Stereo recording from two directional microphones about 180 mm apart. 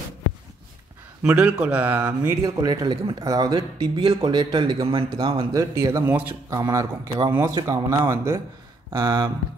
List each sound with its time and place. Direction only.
1.2 s speech: 5° right (ahead or behind)
2.4 s speech: 20° right (ahead or behind)
5.5 s speech: 20° right (ahead or behind)